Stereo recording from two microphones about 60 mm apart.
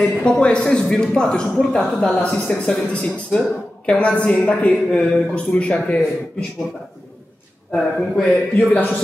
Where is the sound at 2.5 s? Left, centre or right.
Left.